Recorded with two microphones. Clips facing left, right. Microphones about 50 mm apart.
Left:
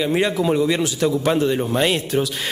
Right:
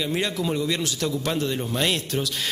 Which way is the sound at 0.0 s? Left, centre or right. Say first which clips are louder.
Left 7 dB; centre.